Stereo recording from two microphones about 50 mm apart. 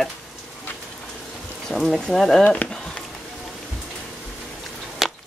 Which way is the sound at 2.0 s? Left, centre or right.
Centre.